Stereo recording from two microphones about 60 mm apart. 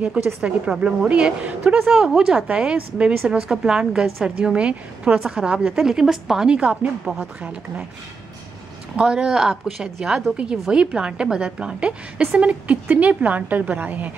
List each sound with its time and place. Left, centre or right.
0.0 s a woman's voice: centre
6.5 s a woman's voice: centre
7.1 s speech: centre
8.9 s a woman's voice: centre